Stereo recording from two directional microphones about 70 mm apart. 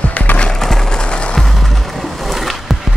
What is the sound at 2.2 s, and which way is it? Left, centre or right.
Skateboard, centre.